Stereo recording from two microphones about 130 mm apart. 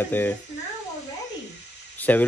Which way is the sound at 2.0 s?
10° left (ahead or behind).